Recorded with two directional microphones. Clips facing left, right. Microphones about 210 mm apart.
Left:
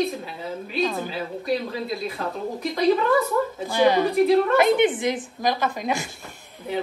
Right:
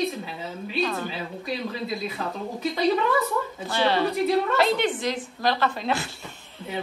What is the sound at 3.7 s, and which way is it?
A woman's voice, 15° left (ahead or behind).